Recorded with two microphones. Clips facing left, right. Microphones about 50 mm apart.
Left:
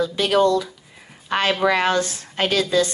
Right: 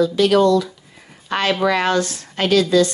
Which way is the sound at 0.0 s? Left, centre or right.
Left.